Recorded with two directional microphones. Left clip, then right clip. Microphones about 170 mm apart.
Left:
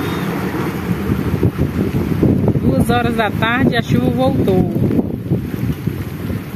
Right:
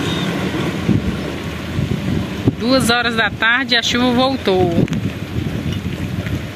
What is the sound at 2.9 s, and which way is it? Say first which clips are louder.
Speech: right 1 dB; 10° left (ahead or behind).